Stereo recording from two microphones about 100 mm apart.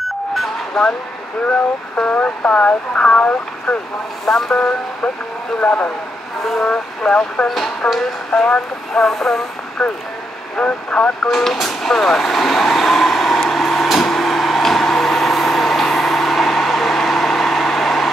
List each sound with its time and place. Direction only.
0.3 s vehicle: 5° left (ahead or behind)
2.0 s speech: 15° left (ahead or behind)
11.2 s vehicle: centre (ahead or behind)